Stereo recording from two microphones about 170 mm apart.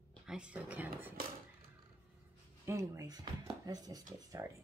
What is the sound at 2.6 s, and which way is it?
Speech, 15° right (ahead or behind).